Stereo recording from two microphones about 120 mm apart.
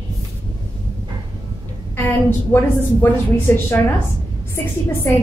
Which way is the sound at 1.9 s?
20° left (ahead or behind).